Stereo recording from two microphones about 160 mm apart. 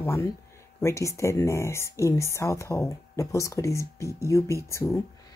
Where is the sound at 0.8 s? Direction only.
20° left (ahead or behind).